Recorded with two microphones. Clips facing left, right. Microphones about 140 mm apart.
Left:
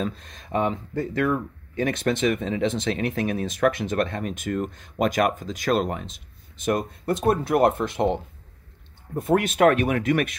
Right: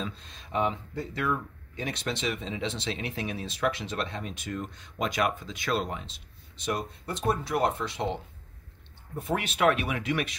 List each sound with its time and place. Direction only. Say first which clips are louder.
0.0 s speech: left 7 dB; 50° left (ahead or behind)